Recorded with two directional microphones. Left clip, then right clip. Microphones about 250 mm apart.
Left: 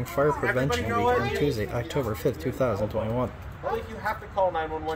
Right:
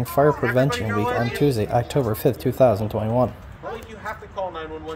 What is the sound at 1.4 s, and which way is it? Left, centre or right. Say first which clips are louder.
Speech: right 7 dB; centre.